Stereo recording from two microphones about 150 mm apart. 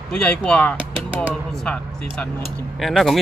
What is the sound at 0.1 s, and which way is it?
Speech, 5° left (ahead or behind).